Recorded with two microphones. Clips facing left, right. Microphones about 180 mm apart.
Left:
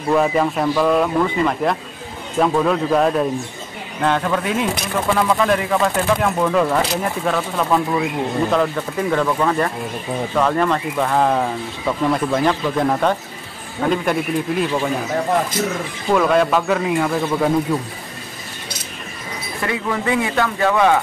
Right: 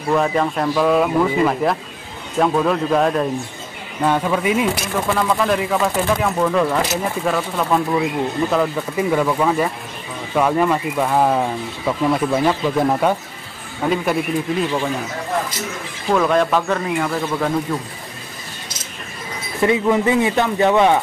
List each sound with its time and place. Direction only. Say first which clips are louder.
0.1 s speech: left 1 dB; 5° left (ahead or behind)
16.1 s speech: left 1 dB; centre (ahead or behind)
19.6 s speech: right 7 dB; 20° right (ahead or behind)